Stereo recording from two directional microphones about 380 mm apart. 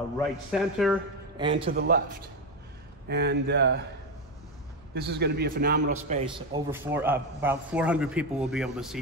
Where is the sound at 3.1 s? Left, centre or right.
Right.